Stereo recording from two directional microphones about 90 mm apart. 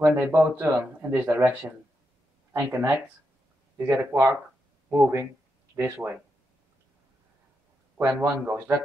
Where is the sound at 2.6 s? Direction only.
30° right (ahead or behind).